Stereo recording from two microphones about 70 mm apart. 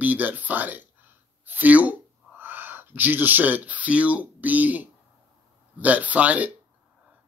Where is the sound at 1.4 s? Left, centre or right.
Right.